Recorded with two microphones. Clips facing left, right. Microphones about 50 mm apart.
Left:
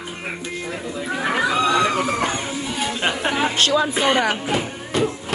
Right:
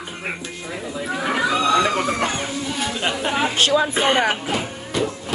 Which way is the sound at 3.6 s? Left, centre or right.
Centre.